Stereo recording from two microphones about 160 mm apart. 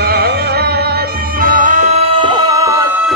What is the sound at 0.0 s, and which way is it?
Music, 80° right.